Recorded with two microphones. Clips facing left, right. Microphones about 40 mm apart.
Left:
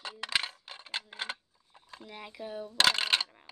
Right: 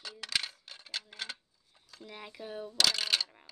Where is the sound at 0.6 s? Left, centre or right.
Left.